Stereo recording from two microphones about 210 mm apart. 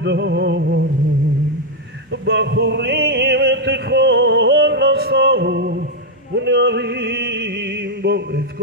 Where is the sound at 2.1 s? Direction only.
55° right (ahead or behind).